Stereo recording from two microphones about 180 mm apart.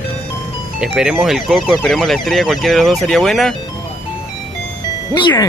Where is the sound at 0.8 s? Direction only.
5° right (ahead or behind).